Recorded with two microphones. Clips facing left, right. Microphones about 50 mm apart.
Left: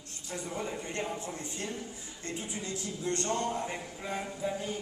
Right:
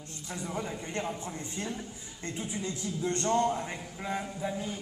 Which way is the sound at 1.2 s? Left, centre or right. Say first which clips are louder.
Right 1 dB; right.